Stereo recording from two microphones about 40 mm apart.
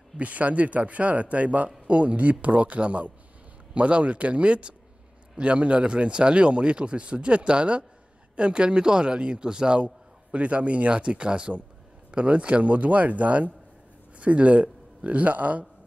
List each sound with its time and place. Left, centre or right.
0.2 s a man's voice: right